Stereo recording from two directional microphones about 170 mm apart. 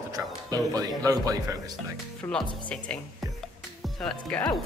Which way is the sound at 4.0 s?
5° left (ahead or behind).